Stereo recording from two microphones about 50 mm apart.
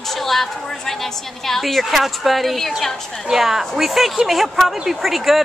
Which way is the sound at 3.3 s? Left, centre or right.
Centre.